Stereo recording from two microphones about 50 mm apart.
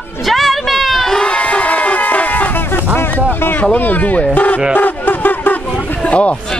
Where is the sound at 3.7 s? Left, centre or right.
Left.